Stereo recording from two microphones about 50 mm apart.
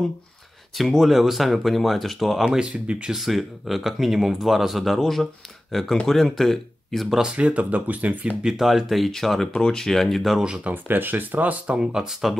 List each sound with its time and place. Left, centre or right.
0.7 s speech: centre
2.7 s speech: right
3.1 s speech: centre
7.3 s speech: right
8.5 s speech: centre
10.4 s speech: centre
10.7 s speech: right
11.8 s speech: centre